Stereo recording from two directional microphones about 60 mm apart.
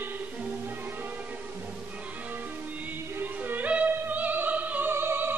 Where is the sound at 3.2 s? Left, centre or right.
Right.